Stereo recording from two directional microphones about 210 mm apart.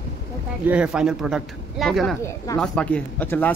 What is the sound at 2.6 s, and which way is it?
Speech, 5° left (ahead or behind).